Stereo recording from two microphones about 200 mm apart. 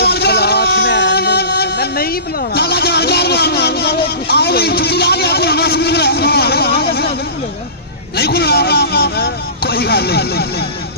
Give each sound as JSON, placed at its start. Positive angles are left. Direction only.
{"t": 0.0, "sound": "music", "side_deg": 55}
{"t": 2.5, "sound": "vehicle", "side_deg": 55}
{"t": 8.2, "sound": "vehicle", "side_deg": 50}